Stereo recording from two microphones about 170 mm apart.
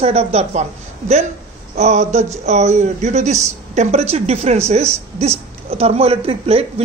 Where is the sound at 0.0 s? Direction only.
35° right (ahead or behind).